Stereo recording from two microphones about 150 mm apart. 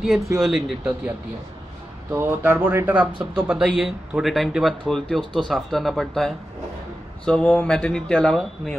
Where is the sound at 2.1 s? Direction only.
10° right (ahead or behind).